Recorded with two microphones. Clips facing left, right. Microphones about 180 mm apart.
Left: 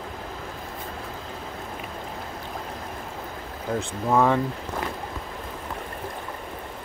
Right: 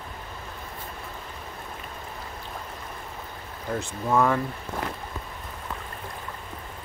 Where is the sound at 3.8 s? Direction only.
15° left (ahead or behind).